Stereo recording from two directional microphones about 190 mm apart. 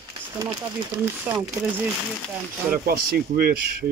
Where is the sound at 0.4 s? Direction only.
15° right (ahead or behind).